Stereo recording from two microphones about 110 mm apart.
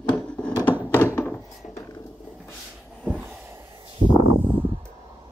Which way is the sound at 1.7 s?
35° left (ahead or behind).